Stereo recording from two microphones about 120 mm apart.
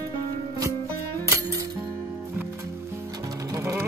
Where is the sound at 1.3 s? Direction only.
25° right (ahead or behind).